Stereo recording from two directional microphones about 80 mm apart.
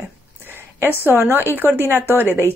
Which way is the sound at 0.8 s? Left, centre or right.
Right.